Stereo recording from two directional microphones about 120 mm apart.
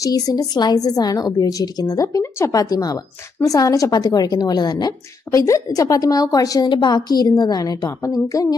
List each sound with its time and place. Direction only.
0.0 s a woman's voice: 30° left (ahead or behind)